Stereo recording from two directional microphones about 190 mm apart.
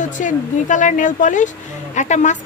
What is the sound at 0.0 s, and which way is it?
A woman's voice, 40° left (ahead or behind).